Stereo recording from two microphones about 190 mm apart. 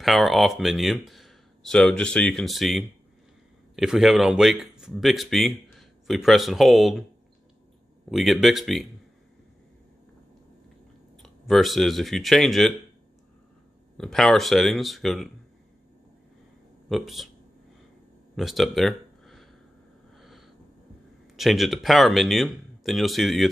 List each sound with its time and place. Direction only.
0.0 s speech: centre (ahead or behind)
8.1 s speech: centre (ahead or behind)
11.2 s speech: centre (ahead or behind)
13.9 s speech: 5° left (ahead or behind)
16.9 s speech: centre (ahead or behind)
18.3 s a sound: centre (ahead or behind)
21.4 s speech: centre (ahead or behind)